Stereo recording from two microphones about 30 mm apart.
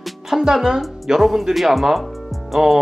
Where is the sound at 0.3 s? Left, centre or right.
Centre.